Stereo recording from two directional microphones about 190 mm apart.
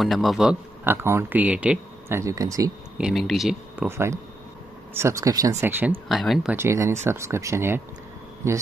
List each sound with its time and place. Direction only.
0.0 s a man's voice: centre (ahead or behind); by 2.7 s 15° right (ahead or behind)
3.0 s speech: centre (ahead or behind)
3.9 s a man's voice: 15° right (ahead or behind)
6.0 s speech: centre (ahead or behind)
6.5 s a man's voice: 15° right (ahead or behind)